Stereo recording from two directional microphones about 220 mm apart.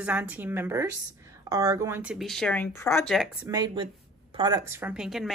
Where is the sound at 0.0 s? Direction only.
5° right (ahead or behind); by 3.1 s 10° left (ahead or behind).